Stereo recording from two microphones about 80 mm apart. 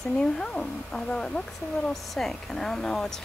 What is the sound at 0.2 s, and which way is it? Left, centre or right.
Speech, centre.